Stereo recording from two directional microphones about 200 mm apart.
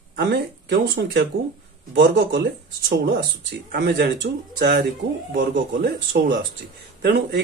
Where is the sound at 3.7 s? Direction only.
55° right (ahead or behind).